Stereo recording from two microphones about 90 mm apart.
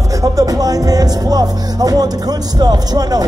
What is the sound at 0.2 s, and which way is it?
Music, 45° right (ahead or behind).